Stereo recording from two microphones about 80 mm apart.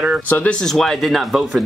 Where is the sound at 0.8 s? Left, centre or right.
Centre.